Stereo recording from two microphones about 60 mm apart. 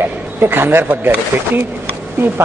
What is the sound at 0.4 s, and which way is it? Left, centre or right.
A man's voice, right.